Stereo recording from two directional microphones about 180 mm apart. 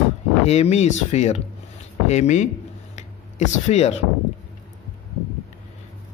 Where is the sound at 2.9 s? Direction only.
40° left (ahead or behind).